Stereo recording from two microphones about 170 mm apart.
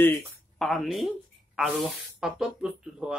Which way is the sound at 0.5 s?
Centre (ahead or behind).